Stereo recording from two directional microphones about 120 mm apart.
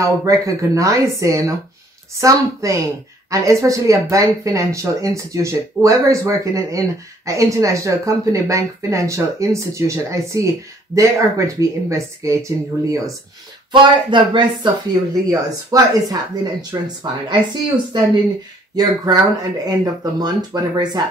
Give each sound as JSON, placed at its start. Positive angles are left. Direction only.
{"t": 0.0, "sound": "a woman's voice", "side_deg": -25}
{"t": 13.7, "sound": "speech", "side_deg": -40}
{"t": 15.2, "sound": "a woman's voice", "side_deg": -30}
{"t": 16.8, "sound": "speech", "side_deg": -40}
{"t": 18.8, "sound": "speech", "side_deg": -35}